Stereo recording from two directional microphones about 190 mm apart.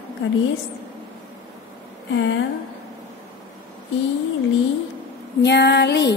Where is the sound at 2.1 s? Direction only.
80° left.